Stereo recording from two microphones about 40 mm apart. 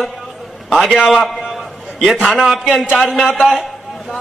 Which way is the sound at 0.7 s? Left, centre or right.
Centre.